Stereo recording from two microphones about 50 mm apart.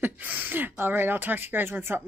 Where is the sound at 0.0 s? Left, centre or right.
Right.